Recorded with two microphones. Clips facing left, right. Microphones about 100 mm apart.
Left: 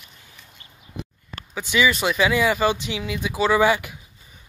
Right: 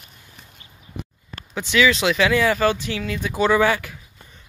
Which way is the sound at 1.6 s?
10° left (ahead or behind).